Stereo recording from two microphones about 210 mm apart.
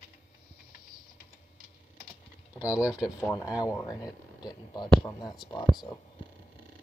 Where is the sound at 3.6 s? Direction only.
15° left (ahead or behind).